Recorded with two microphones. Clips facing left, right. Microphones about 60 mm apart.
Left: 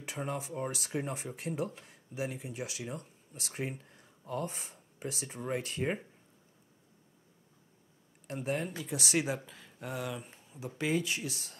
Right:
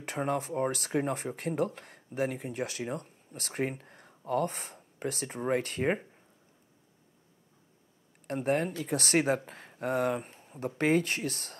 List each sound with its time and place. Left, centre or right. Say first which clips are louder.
0.0 s speech: right 6 dB; right
8.3 s speech: right 6 dB; right
10.4 s a sound: right 7 dB; right
10.8 s speech: right 5 dB; right